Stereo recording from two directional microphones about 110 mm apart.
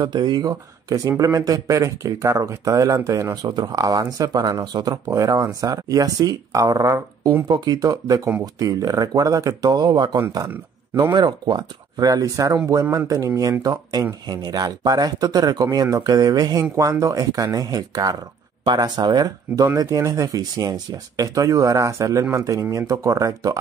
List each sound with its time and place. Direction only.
0.0 s speech: 40° right (ahead or behind)
3.4 s speech: 40° right (ahead or behind)
10.5 s speech: 20° right (ahead or behind)
11.1 s speech: 40° right (ahead or behind)